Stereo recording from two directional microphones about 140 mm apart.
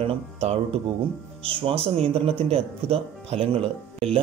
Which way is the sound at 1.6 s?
40° right (ahead or behind).